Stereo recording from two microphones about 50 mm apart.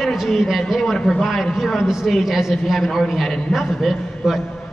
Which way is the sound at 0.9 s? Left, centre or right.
Centre.